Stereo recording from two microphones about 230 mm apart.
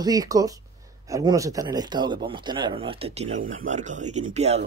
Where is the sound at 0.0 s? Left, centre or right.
Centre.